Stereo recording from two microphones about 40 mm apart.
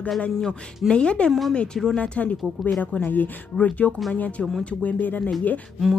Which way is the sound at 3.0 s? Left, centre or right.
Left.